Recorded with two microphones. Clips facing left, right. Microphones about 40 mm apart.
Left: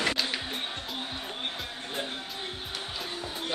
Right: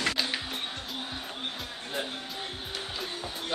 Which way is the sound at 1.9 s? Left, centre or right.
Centre.